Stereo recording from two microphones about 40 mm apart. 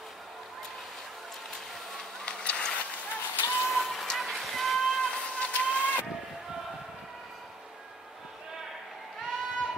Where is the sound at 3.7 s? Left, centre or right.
Centre.